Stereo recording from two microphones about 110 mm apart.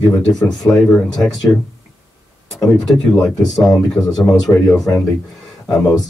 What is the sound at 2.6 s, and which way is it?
Speech, centre (ahead or behind).